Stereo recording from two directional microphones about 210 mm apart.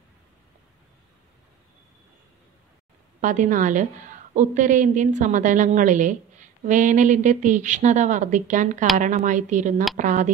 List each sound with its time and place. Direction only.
3.2 s a woman's voice: 35° right (ahead or behind)